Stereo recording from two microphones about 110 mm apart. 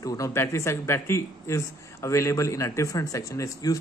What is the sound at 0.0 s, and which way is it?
Speech, 30° left (ahead or behind).